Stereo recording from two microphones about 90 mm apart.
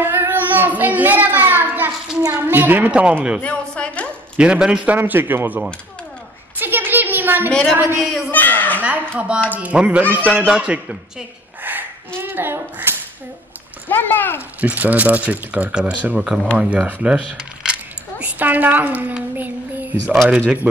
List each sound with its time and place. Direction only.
0.0 s child singing: 25° right (ahead or behind)
2.3 s speech: 20° right (ahead or behind)
3.4 s a woman's voice: 15° left (ahead or behind)
4.4 s a child's voice: 10° right (ahead or behind)
6.6 s a sound: 20° right (ahead or behind)
7.7 s a child's voice: 25° right (ahead or behind)
8.0 s speech: 5° right (ahead or behind)
8.3 s a sound: 20° left (ahead or behind)
8.8 s a child's voice: 15° right (ahead or behind)
13.8 s a child's voice: 20° left (ahead or behind)
14.6 s a woman's voice: 15° right (ahead or behind)